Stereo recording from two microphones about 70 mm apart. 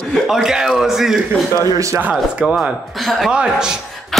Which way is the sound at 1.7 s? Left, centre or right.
Right.